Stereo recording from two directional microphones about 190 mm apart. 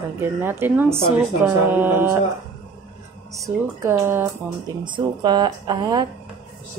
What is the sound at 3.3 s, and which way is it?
Speech, 15° right (ahead or behind).